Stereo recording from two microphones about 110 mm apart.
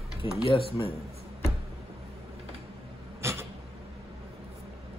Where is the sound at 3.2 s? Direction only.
25° right (ahead or behind).